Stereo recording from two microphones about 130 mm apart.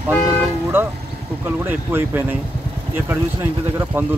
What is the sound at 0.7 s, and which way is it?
Speech, 15° right (ahead or behind).